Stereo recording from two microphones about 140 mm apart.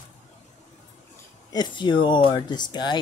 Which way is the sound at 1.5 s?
30° left (ahead or behind).